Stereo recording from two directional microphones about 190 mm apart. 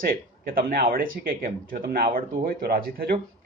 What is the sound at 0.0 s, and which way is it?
Speech, 50° right (ahead or behind).